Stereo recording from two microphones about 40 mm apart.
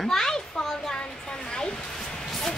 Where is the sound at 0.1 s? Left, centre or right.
Centre.